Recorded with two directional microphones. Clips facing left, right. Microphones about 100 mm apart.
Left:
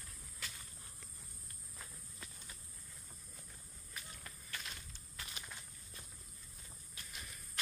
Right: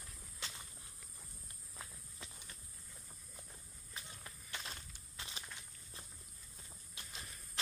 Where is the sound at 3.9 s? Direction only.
25° right (ahead or behind).